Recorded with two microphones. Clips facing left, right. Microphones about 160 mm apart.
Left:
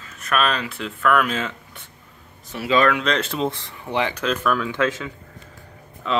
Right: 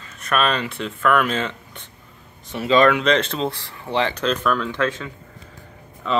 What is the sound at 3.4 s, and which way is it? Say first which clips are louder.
Speech: left 1 dB; 20° left (ahead or behind).